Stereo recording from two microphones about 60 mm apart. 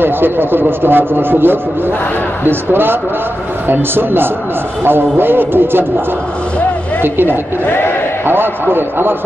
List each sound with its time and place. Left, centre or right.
0.0 s speech: right
7.6 s a man's voice: left
8.3 s speech: right